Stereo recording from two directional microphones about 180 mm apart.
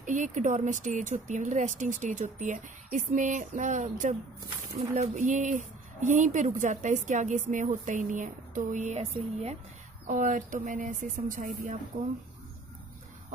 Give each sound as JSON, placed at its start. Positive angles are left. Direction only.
{"t": 0.0, "sound": "speech", "side_deg": -45}